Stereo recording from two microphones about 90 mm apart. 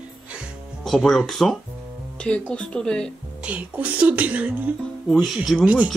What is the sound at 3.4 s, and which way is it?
Speech, 15° right (ahead or behind).